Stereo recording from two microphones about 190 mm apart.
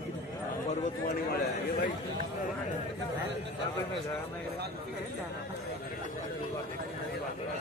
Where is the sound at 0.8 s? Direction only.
50° left (ahead or behind).